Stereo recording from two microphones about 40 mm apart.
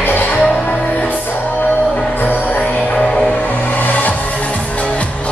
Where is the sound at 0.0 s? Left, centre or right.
Left.